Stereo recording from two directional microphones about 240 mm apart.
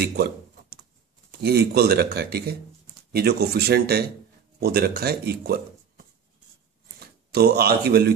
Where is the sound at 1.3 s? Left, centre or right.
Right.